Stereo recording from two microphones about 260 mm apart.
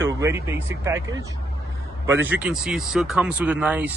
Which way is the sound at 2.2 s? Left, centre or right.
Centre.